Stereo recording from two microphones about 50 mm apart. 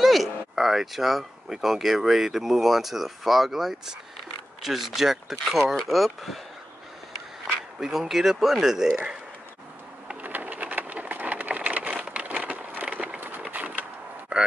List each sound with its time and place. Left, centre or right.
0.0 s speech: centre
7.8 s speech: centre
10.2 s sewing machine: right
11.9 s a sound: centre